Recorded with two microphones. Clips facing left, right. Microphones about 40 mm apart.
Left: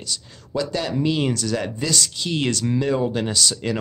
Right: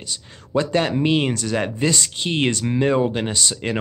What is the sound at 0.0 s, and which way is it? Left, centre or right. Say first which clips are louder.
Speech: left 1 dB; right.